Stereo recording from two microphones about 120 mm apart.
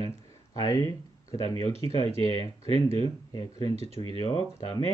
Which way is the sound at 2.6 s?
55° right (ahead or behind).